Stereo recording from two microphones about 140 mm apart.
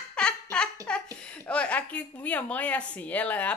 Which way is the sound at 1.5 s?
10° left (ahead or behind).